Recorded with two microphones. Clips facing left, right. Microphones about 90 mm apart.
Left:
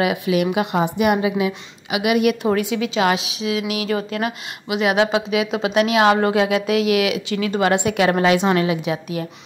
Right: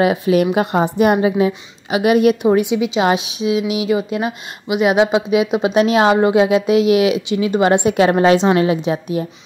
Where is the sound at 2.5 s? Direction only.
20° right (ahead or behind).